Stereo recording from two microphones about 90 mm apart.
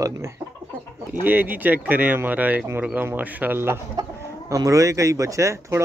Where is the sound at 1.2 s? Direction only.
20° right (ahead or behind).